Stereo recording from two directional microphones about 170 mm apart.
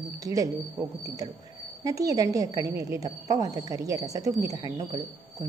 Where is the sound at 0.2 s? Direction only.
20° right (ahead or behind).